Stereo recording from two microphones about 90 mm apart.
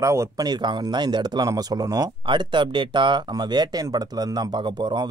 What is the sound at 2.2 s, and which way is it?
Speech, 65° right (ahead or behind).